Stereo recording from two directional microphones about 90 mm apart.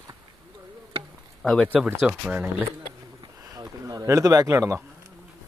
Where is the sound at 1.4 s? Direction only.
5° left (ahead or behind).